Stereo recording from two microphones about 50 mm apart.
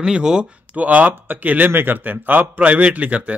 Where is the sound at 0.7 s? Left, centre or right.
Right.